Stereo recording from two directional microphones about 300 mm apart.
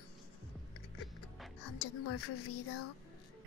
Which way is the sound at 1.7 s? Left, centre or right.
Left.